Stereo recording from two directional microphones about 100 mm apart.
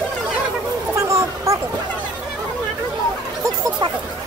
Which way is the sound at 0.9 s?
30° right (ahead or behind).